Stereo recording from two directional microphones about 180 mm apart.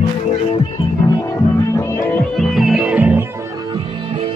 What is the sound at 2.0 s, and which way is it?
Music, centre (ahead or behind).